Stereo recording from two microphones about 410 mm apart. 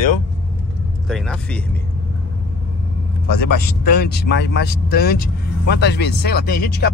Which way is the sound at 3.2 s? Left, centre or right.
Left.